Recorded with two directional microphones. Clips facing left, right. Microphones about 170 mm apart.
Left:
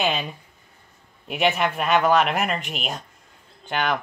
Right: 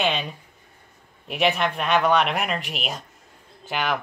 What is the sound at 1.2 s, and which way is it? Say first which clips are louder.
Speech: even; centre (ahead or behind).